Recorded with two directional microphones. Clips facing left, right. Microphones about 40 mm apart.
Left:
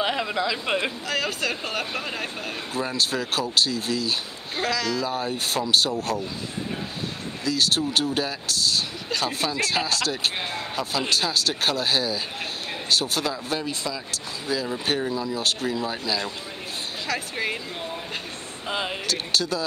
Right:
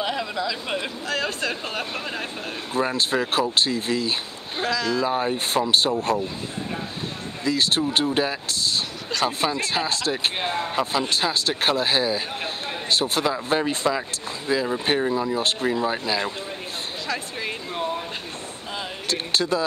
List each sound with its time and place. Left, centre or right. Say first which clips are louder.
0.0 s speech: left 1 dB; centre
1.0 s speech: even; centre
2.9 s speech: right 3 dB; right
4.6 s speech: right 2 dB; centre; by 6.2 s right
7.4 s speech: right 2 dB; right
14.5 s speech: right 4 dB; right
19.0 s speech: right 6 dB; right